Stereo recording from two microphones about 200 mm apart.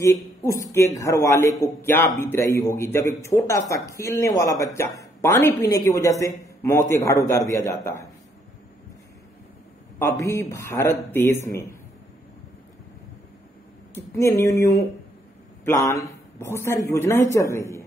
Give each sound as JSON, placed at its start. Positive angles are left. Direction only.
{"t": 0.0, "sound": "speech", "side_deg": 15}
{"t": 10.2, "sound": "speech", "side_deg": 15}
{"t": 13.9, "sound": "speech", "side_deg": 15}